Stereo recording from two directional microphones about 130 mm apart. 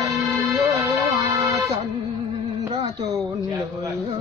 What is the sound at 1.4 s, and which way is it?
Music, 55° right (ahead or behind).